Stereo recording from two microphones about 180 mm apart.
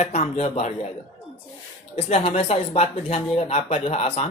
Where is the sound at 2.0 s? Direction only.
35° left (ahead or behind).